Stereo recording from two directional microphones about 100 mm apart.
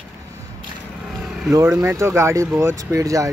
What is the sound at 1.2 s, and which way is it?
Vehicle, 5° right (ahead or behind).